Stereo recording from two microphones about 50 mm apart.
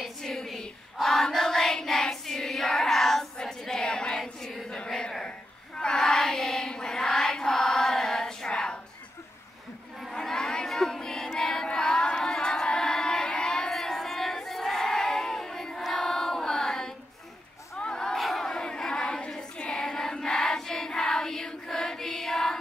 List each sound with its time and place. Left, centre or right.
0.0 s a sound: centre
0.9 s child singing: centre
3.3 s a sound: centre
5.8 s child singing: centre
6.7 s chant: centre
10.1 s child singing: centre
13.7 s crowd: centre
15.9 s choir: centre
17.7 s crowd: centre
18.1 s battle cry: centre
19.5 s child singing: centre